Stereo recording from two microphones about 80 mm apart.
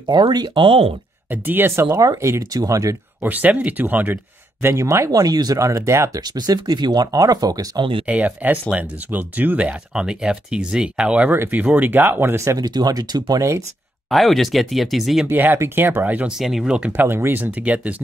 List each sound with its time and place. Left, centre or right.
0.0 s speech: right
1.3 s speech: right
2.5 s speech: right
3.2 s speech: right
5.2 s speech: right
6.2 s speech: right
8.1 s speech: centre
11.3 s speech: right
12.5 s speech: right
14.1 s speech: centre
15.2 s speech: right
16.3 s speech: centre
16.9 s speech: right